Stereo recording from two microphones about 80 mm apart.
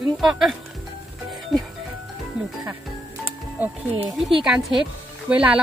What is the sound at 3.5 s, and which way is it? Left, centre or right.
Speech, right.